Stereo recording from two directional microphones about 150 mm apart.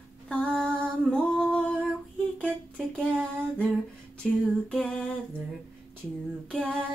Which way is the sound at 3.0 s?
5° left (ahead or behind).